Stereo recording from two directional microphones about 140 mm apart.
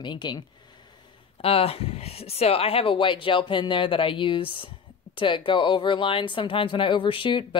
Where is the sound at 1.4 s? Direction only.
45° left (ahead or behind).